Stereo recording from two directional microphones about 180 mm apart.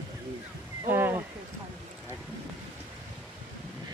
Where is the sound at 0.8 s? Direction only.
10° right (ahead or behind).